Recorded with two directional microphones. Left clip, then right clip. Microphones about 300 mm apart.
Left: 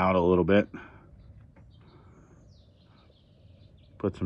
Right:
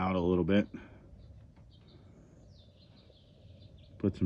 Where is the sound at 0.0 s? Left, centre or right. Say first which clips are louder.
Left 8 dB; centre.